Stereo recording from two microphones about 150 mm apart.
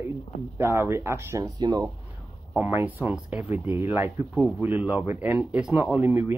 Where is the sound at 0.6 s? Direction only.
15° right (ahead or behind).